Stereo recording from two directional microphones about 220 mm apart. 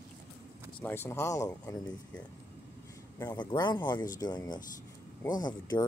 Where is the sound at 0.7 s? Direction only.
10° left (ahead or behind).